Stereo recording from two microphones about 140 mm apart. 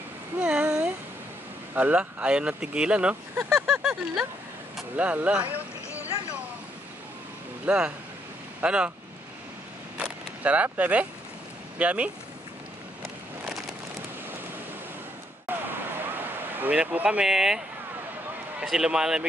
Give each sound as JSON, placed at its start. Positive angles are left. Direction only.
{"t": 0.4, "sound": "a sound", "side_deg": -10}
{"t": 1.7, "sound": "speech", "side_deg": -10}
{"t": 7.6, "sound": "speech", "side_deg": -5}
{"t": 9.9, "sound": "vehicle", "side_deg": -10}
{"t": 11.8, "sound": "speech", "side_deg": -10}
{"t": 15.4, "sound": "a sound", "side_deg": -15}
{"t": 18.6, "sound": "speech", "side_deg": -5}